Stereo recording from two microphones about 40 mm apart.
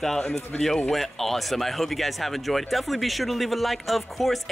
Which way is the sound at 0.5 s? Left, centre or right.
Left.